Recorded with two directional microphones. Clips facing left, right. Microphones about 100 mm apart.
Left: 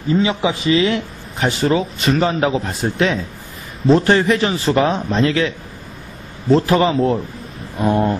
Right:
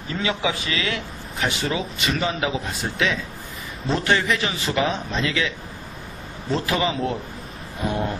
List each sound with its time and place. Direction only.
0.1 s speech: 20° left (ahead or behind)
6.5 s speech: 40° left (ahead or behind)